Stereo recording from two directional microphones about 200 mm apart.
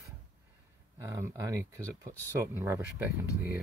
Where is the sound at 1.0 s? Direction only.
15° right (ahead or behind).